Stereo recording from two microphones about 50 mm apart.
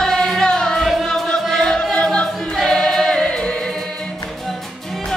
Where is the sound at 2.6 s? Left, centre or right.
Centre.